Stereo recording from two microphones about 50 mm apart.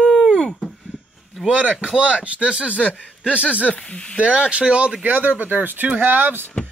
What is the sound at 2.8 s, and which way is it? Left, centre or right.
Speech, left.